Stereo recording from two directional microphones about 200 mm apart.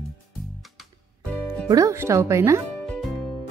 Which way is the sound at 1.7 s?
15° right (ahead or behind).